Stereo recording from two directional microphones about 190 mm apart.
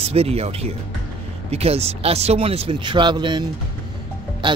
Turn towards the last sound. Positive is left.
turn(degrees=-25)  # may be behind; listen again after turning